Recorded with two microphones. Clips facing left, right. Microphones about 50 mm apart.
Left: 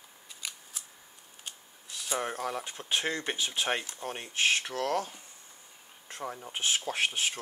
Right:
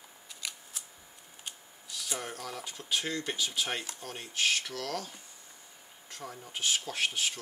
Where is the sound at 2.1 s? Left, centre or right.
Left.